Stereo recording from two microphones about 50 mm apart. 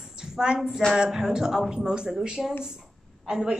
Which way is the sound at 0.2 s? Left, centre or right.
Centre.